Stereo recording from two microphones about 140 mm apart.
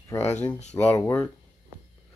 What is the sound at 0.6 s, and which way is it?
Speech, 55° left (ahead or behind).